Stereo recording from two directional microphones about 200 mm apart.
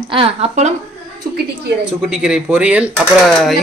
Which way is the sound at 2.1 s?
5° right (ahead or behind).